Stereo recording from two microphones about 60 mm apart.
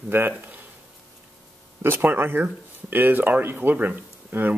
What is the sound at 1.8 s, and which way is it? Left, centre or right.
Speech, right.